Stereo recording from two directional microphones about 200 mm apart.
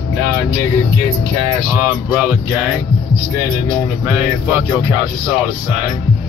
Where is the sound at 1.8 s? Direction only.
10° right (ahead or behind).